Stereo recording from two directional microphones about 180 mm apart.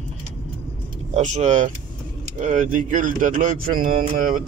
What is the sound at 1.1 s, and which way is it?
Speech, 40° right (ahead or behind).